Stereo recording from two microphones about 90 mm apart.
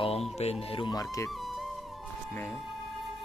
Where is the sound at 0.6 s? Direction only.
90° left.